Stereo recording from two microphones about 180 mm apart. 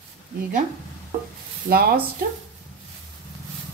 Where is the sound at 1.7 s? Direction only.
60° right (ahead or behind).